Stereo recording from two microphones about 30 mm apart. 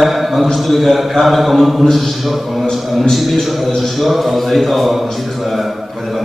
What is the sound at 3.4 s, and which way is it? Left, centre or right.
Speech, centre.